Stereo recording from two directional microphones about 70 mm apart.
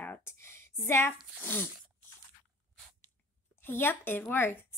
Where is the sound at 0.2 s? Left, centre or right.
Left.